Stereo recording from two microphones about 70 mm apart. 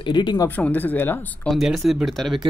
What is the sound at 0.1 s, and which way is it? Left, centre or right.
Speech, left.